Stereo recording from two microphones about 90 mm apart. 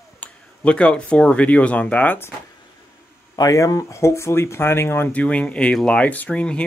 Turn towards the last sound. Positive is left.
turn(degrees=15)  # may be behind; listen again after turning